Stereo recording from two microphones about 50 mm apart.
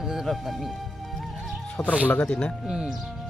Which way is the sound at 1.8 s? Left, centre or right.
Left.